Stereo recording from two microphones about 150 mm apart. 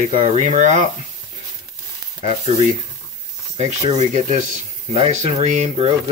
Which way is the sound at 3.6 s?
45° right (ahead or behind).